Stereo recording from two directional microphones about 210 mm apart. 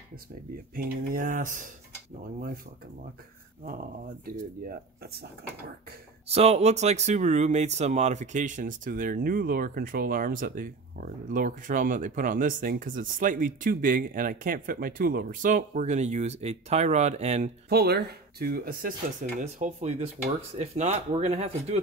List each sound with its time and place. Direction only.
0.7 s speech: 40° right (ahead or behind)
3.6 s speech: 45° right (ahead or behind)
6.3 s speech: 30° right (ahead or behind)
17.6 s speech: 50° right (ahead or behind)
19.4 s speech: 30° right (ahead or behind)